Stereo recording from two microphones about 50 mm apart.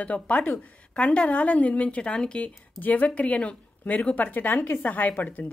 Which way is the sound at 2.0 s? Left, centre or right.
Centre.